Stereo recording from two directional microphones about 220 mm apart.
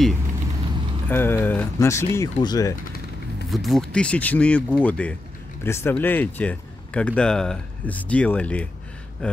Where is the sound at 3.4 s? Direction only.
Centre (ahead or behind).